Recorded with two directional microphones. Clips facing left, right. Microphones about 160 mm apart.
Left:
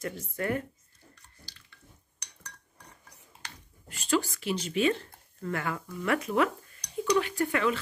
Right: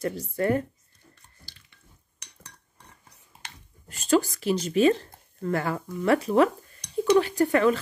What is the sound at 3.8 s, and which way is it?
Speech, 40° right (ahead or behind).